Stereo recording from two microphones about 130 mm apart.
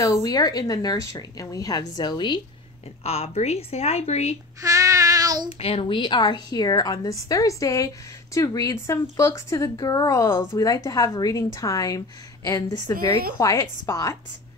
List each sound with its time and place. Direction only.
0.0 s a woman's voice: 25° left (ahead or behind)
3.0 s speech: 50° left (ahead or behind)
4.6 s child singing: 25° right (ahead or behind)
5.5 s a woman's voice: 50° left (ahead or behind); by 14.1 s 25° left (ahead or behind)